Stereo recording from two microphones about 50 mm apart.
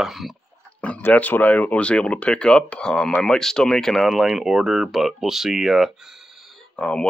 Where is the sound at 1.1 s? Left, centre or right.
Left; by 4.1 s centre.